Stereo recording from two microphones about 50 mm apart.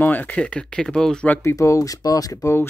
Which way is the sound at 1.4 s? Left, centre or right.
Left.